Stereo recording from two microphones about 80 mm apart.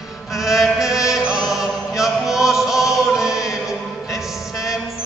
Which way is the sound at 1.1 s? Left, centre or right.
Centre.